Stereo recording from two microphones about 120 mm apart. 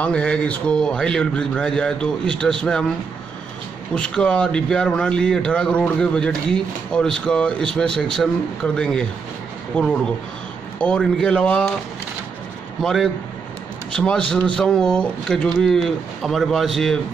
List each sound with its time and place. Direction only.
0.0 s speech: 10° left (ahead or behind)
3.9 s speech: 5° left (ahead or behind)
10.8 s speech: 10° left (ahead or behind)
12.8 s speech: centre (ahead or behind)